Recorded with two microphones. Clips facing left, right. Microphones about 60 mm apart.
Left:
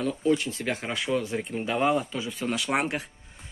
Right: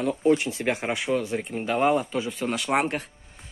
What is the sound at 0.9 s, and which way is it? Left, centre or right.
Speech, centre.